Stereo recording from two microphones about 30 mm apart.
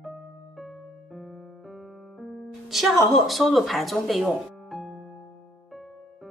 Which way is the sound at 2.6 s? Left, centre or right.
Centre.